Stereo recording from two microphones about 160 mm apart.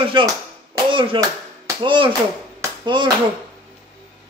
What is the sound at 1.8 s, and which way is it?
A man's voice, 30° right (ahead or behind).